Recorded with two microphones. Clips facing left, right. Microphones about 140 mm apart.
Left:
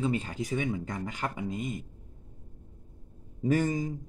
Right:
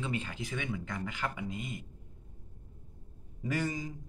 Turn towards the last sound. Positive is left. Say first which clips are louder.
# left 7 dB
turn(degrees=45)  # may be behind; listen again after turning